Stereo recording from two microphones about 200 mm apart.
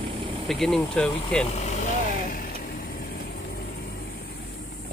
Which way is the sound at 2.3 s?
45° left (ahead or behind).